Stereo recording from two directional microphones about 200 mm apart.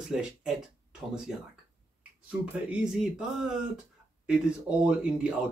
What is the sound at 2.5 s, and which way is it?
Speech, 5° right (ahead or behind).